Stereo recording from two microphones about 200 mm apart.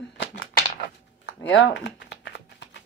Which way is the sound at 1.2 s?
60° left (ahead or behind).